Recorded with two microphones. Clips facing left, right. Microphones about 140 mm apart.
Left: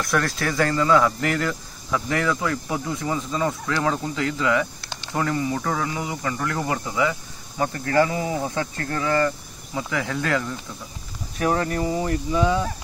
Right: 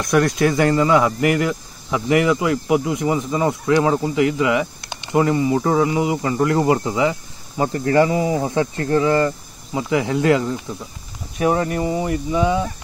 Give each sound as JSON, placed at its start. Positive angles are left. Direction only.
{"t": 0.0, "sound": "speech", "side_deg": -20}